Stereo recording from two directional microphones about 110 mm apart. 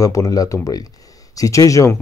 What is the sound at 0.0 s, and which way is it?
Speech, 30° left (ahead or behind).